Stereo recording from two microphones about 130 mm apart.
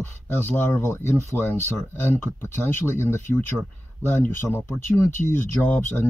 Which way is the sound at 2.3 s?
15° left (ahead or behind).